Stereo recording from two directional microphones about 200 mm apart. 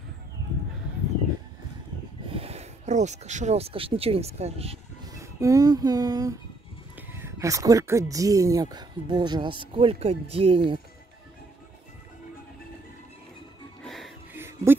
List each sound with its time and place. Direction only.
2.2 s speech: 30° right (ahead or behind)
5.1 s music: 15° right (ahead or behind)
7.0 s speech: 10° right (ahead or behind); by 10.8 s 25° right (ahead or behind)
13.8 s music: centre (ahead or behind)
14.3 s a sound: 10° right (ahead or behind)